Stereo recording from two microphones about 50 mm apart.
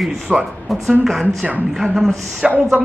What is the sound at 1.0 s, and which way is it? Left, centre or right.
Speech, centre.